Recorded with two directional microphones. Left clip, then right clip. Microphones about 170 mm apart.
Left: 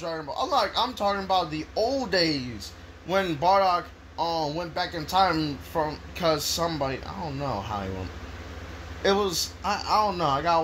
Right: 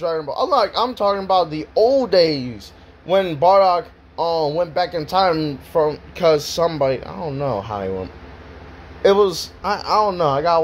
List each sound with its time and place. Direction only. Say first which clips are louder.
0.0 s speech: right 9 dB; 30° right (ahead or behind)